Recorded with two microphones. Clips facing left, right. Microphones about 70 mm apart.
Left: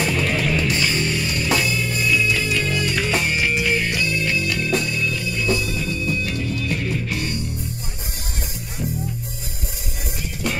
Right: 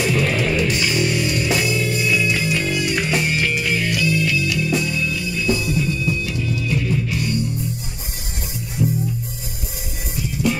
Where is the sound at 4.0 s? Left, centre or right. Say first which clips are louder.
Right 3 dB; left.